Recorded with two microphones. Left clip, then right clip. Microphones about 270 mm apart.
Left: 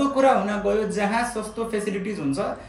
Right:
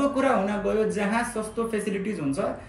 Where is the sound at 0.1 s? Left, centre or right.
Centre.